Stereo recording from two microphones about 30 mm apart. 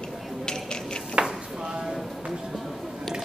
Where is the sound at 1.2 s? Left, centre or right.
Right.